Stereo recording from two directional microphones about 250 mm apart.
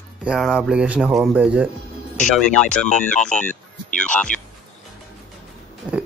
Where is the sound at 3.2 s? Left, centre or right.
Left.